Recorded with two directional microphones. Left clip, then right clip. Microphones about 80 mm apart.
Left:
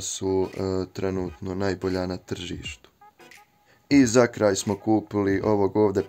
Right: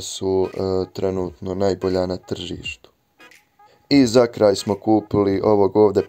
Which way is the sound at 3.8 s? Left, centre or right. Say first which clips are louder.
Right 4 dB; right.